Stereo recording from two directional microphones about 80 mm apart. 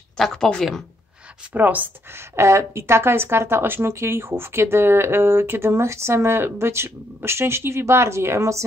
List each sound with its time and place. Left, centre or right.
0.2 s a woman's voice: centre
1.5 s speech: right
2.3 s speech: right